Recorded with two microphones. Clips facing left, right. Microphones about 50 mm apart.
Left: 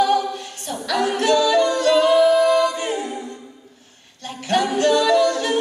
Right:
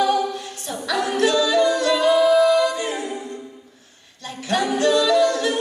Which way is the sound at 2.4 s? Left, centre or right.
Left.